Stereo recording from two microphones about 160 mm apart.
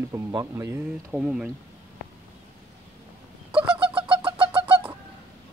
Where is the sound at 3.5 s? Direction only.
30° right (ahead or behind).